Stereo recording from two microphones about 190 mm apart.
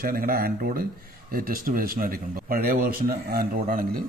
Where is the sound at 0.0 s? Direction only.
50° right (ahead or behind).